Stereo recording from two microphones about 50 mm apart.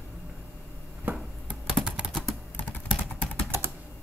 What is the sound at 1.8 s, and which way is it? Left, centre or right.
Typing, right.